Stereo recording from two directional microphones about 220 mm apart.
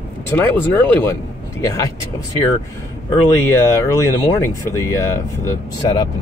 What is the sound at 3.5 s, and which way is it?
Speech, 10° left (ahead or behind).